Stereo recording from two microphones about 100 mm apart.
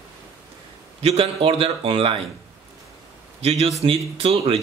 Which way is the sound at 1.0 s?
75° right (ahead or behind).